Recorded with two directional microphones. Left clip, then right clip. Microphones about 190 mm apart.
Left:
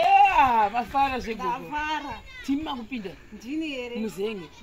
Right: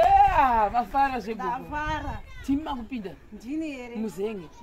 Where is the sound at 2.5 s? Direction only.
Centre (ahead or behind).